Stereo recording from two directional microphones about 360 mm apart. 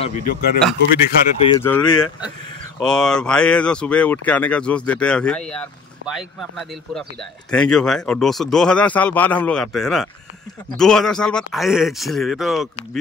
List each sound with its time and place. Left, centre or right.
0.0 s speech: left
1.4 s speech: centre